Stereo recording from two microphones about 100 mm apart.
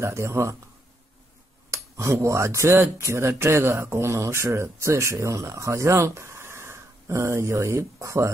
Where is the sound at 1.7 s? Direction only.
30° right (ahead or behind).